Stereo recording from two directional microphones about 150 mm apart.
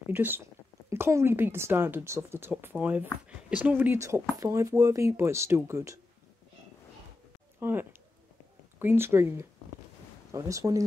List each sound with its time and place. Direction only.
0.0 s speech: 15° right (ahead or behind)
7.6 s speech: 15° right (ahead or behind)